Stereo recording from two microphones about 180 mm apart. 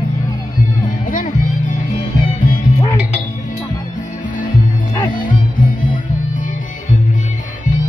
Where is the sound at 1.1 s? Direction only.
45° left (ahead or behind).